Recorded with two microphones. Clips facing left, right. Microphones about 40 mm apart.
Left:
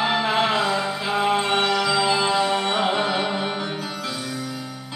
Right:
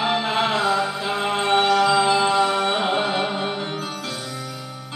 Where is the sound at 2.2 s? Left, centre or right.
Right.